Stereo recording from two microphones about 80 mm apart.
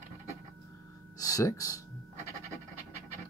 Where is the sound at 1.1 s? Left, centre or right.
Left.